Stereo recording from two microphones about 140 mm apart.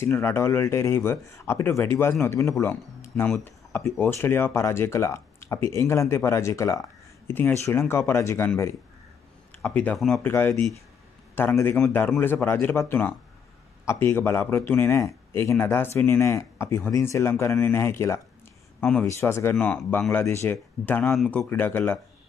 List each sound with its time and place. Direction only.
0.0 s speech: 20° left (ahead or behind)
3.4 s a sound: 15° left (ahead or behind)
3.9 s speech: 15° left (ahead or behind)
9.6 s speech: 10° left (ahead or behind)
10.2 s speech: 15° left (ahead or behind)
18.8 s speech: 10° left (ahead or behind)
19.0 s speech: 20° left (ahead or behind)